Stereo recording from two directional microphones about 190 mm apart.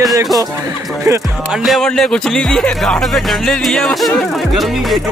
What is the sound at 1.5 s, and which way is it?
Speech, centre (ahead or behind).